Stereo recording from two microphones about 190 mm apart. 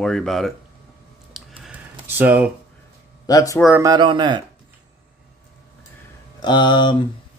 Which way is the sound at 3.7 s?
20° right (ahead or behind).